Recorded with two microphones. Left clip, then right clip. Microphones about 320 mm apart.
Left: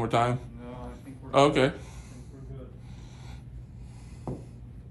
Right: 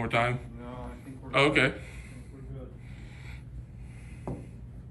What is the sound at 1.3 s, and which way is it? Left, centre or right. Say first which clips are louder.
Speech: left 2 dB; centre.